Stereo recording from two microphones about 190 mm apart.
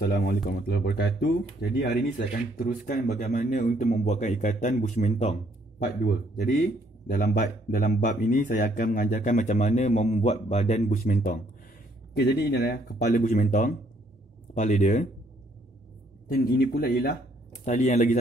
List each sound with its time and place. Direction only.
0.0 s speech: 50° left (ahead or behind)
7.1 s speech: 45° left (ahead or behind)
16.3 s speech: 55° left (ahead or behind)
17.6 s speech: 40° left (ahead or behind)